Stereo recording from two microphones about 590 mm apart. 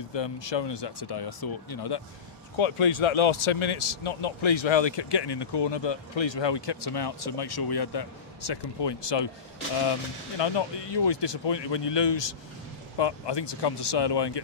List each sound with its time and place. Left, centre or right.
0.1 s speech: left
2.5 s speech: left